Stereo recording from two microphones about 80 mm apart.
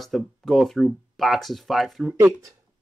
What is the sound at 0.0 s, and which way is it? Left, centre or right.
Speech, centre.